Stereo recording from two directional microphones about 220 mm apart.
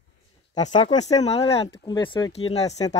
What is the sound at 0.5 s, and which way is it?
Speech, 20° left (ahead or behind).